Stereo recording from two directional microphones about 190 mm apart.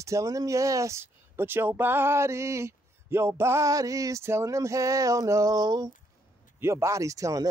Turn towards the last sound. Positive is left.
turn(degrees=-15)  # may be behind; listen again after turning